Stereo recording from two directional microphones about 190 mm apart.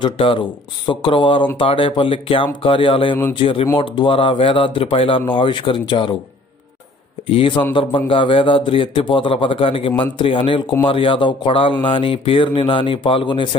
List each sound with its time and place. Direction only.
0.0 s speech: 25° left (ahead or behind)
7.2 s speech: 30° left (ahead or behind)